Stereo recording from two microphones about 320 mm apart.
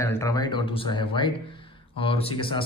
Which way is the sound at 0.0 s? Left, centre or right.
Centre.